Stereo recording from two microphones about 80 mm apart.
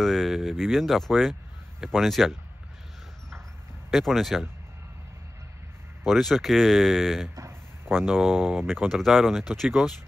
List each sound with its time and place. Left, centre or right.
0.0 s speech: centre
3.9 s speech: centre
6.0 s speech: centre
7.3 s a sound: right
8.1 s speech: centre